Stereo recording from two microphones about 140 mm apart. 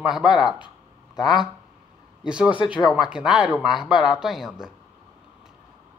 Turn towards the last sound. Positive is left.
turn(degrees=-5)  # may be behind; listen again after turning